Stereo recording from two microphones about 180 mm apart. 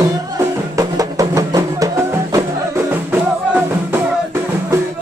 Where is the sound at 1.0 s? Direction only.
20° right (ahead or behind).